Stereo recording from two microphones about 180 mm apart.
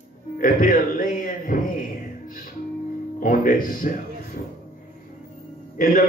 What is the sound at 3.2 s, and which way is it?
Speech, 50° left (ahead or behind).